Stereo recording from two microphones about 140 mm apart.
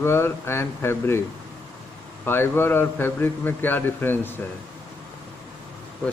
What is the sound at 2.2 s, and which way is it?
A man's voice, 15° left (ahead or behind).